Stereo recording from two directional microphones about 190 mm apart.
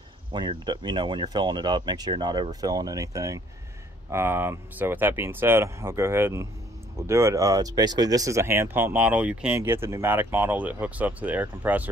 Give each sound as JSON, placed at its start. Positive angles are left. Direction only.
{"t": 0.3, "sound": "speech", "side_deg": -25}